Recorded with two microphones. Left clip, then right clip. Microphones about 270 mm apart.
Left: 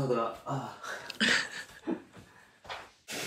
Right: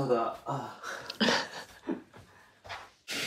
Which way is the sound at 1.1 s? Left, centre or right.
Centre.